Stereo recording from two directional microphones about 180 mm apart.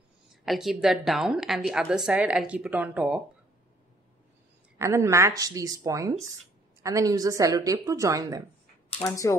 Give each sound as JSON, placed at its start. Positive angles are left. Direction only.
{"t": 0.3, "sound": "a woman's voice", "side_deg": 0}
{"t": 4.7, "sound": "a woman's voice", "side_deg": -15}
{"t": 9.0, "sound": "speech", "side_deg": 20}